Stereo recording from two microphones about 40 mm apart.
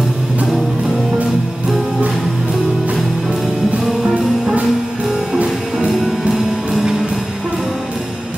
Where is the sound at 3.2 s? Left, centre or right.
Centre.